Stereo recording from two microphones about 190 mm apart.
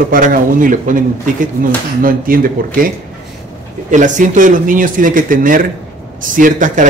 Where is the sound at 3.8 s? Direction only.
40° right (ahead or behind).